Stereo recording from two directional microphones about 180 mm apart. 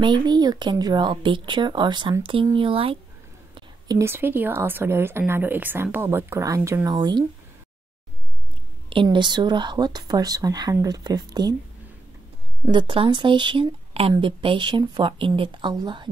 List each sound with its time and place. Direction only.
0.0 s a woman's voice: 25° right (ahead or behind)
8.8 s speech: 25° right (ahead or behind)
12.6 s speech: 25° right (ahead or behind)